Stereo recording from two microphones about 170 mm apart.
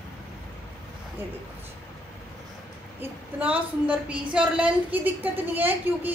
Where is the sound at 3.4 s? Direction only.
10° right (ahead or behind).